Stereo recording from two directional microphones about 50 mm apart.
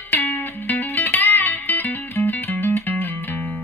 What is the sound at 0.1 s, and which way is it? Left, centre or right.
Music, left.